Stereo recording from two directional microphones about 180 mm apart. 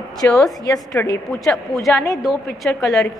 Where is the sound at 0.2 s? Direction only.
15° left (ahead or behind).